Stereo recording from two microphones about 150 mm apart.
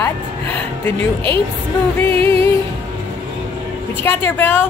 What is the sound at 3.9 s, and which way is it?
Speech, 15° left (ahead or behind).